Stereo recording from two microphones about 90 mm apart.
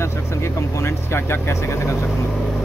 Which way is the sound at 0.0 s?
30° left (ahead or behind).